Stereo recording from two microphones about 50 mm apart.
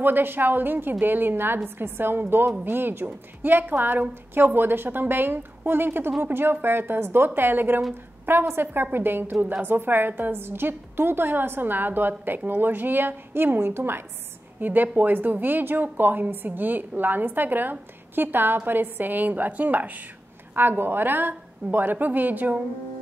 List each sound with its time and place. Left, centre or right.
0.0 s a woman's voice: right
14.6 s a woman's voice: right